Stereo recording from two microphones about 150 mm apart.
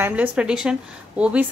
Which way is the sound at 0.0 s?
10° right (ahead or behind).